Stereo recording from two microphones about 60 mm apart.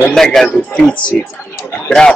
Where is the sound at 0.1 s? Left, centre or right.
Centre.